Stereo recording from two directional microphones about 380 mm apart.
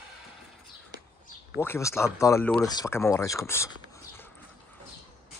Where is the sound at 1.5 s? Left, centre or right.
Centre.